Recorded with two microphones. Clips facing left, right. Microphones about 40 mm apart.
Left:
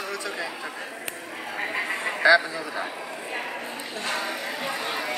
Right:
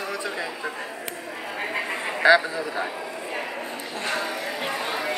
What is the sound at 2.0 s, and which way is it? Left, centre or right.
Speech, centre.